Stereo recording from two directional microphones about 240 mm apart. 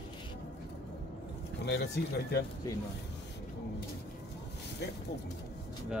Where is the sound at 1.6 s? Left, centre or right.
Left.